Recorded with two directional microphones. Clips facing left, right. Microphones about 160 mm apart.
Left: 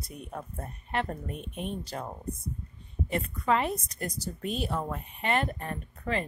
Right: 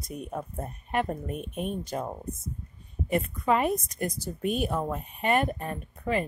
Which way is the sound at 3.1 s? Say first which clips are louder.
Right 3 dB; 15° right (ahead or behind).